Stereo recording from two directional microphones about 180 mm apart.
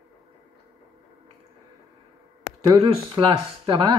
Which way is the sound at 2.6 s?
25° right (ahead or behind).